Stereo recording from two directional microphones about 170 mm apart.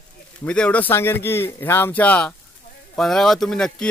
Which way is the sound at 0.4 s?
5° left (ahead or behind).